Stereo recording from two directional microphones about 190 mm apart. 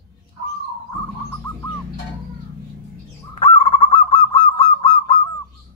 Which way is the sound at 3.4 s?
30° left (ahead or behind).